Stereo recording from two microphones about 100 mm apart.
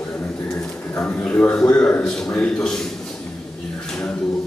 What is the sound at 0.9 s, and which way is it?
A man's voice, 15° left (ahead or behind).